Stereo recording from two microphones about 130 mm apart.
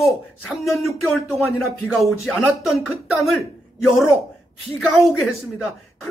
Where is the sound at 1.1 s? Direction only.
15° left (ahead or behind).